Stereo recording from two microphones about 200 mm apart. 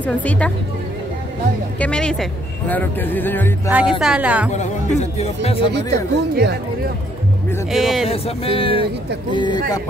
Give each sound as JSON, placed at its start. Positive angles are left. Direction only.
{"t": 0.0, "sound": "speech", "side_deg": 5}
{"t": 1.8, "sound": "speech", "side_deg": 5}
{"t": 3.6, "sound": "speech", "side_deg": -5}
{"t": 4.5, "sound": "speech", "side_deg": 35}
{"t": 5.7, "sound": "speech", "side_deg": -60}
{"t": 7.7, "sound": "speech", "side_deg": 0}
{"t": 8.1, "sound": "speech", "side_deg": 30}